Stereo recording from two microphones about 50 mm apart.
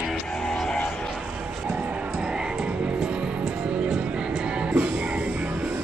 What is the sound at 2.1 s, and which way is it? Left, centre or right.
Music, centre.